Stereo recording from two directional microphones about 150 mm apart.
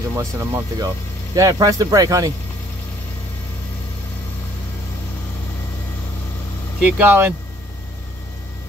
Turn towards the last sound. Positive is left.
turn(degrees=-10)  # may be behind; listen again after turning